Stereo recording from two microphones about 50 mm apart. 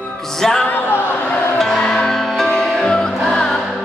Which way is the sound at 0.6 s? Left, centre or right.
Left.